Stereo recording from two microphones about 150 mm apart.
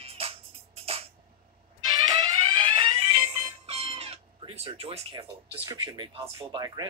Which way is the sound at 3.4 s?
40° right (ahead or behind).